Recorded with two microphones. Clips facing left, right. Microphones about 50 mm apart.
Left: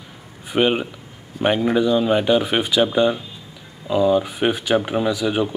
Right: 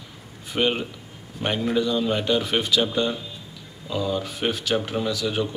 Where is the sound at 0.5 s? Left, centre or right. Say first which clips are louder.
Left 5 dB; centre.